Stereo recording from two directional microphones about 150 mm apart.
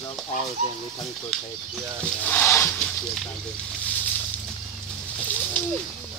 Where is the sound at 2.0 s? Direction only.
10° left (ahead or behind).